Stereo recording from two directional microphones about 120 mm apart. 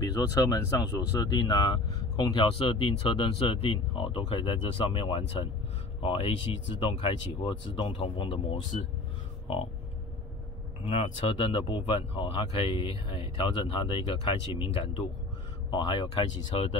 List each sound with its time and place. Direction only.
0.0 s speech: 30° left (ahead or behind); by 8.4 s 45° left (ahead or behind)
8.7 s speech: 80° left
10.8 s speech: 55° left (ahead or behind)